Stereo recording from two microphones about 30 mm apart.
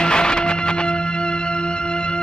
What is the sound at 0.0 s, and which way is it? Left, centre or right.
Music, left.